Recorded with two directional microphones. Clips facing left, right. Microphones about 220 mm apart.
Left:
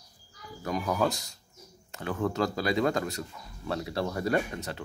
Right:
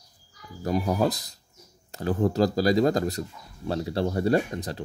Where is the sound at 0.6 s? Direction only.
35° right (ahead or behind).